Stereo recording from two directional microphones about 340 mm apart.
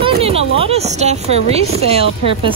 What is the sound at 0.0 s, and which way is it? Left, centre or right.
A woman's voice, centre.